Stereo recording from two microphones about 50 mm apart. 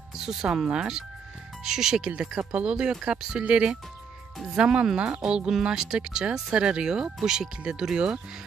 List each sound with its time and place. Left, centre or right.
0.2 s speech: centre
2.5 s speech: right